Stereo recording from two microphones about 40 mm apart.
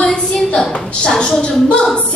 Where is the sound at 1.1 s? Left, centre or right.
Centre.